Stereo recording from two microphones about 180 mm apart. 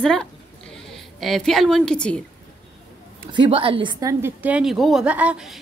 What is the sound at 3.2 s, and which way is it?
Speech, 30° right (ahead or behind).